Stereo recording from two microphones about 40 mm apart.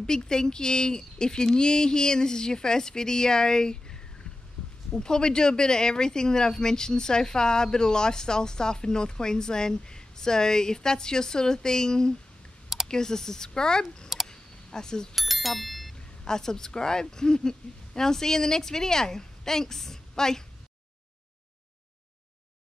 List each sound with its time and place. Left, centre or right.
0.0 s speech: centre
14.2 s camera: centre
15.1 s bicycle bell: centre
16.3 s speech: centre